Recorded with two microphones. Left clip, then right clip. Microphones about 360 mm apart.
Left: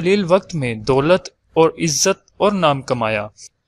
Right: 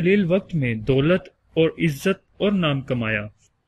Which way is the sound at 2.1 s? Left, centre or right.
Centre.